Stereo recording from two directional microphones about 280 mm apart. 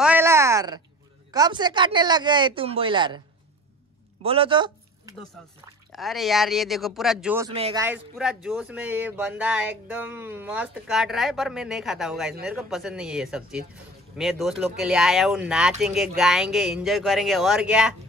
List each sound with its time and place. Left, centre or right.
0.0 s a sound: centre
1.3 s speech: centre
4.2 s speech: centre
5.9 s speech: centre
7.5 s speech: right
7.8 s speech: centre